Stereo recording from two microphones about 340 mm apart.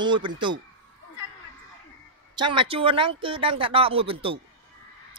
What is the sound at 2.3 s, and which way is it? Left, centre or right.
A man's voice, centre.